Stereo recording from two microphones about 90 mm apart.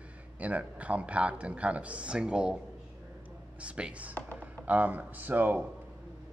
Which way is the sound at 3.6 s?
10° right (ahead or behind).